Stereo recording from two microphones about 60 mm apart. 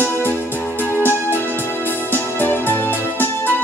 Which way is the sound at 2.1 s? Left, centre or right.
Left.